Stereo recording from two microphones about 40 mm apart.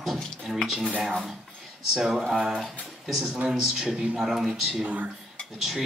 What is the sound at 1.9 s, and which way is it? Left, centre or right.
A man's voice, centre.